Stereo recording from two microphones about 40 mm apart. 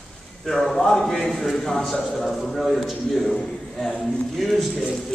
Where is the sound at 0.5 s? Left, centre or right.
Centre.